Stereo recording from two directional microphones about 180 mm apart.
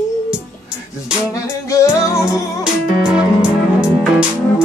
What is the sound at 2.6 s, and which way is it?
Music, 5° right (ahead or behind).